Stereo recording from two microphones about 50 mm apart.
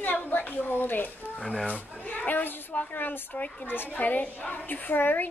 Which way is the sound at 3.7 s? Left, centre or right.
Left.